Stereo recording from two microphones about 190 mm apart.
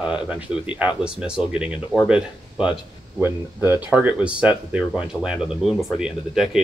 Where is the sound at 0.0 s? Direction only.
5° right (ahead or behind).